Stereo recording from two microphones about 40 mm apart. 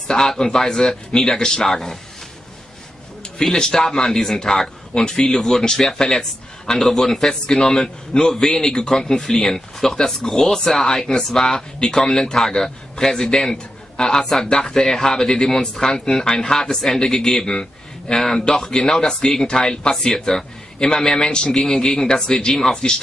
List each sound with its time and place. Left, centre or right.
0.1 s speech: centre
3.3 s speech: centre
21.5 s speech: centre